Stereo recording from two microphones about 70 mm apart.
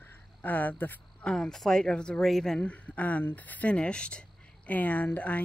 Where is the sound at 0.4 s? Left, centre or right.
Left.